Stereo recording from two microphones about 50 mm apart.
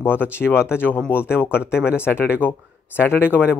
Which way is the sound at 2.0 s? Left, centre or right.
Left.